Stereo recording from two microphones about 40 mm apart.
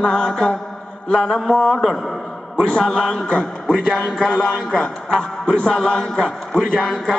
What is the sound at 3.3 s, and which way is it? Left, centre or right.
A man's voice, left.